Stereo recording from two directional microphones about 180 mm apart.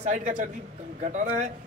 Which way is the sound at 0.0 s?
45° right (ahead or behind).